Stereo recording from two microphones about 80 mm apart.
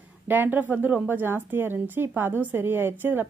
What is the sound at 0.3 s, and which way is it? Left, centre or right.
A woman's voice, right.